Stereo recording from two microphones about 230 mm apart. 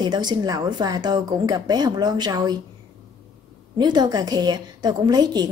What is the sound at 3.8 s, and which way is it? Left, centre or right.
A woman's voice, centre.